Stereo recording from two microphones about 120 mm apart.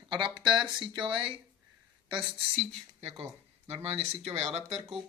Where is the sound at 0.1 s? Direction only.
45° right (ahead or behind).